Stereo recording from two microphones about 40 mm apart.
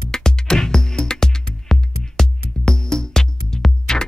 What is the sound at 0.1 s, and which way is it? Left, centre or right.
Music, centre.